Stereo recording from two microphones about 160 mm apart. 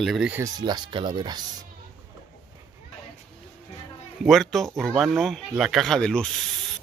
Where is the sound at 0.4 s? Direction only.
25° right (ahead or behind).